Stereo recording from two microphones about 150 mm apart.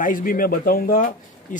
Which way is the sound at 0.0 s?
65° left (ahead or behind).